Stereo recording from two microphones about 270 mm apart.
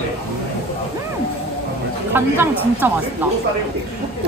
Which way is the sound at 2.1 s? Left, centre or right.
Centre.